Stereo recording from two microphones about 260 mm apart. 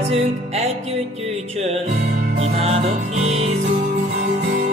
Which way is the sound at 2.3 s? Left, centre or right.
Right.